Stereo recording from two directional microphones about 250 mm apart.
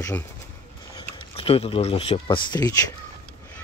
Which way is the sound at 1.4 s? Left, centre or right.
Left.